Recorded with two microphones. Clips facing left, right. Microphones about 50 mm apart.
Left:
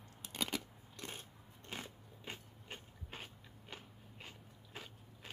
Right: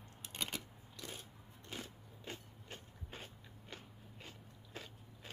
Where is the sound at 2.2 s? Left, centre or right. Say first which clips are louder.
Even; left.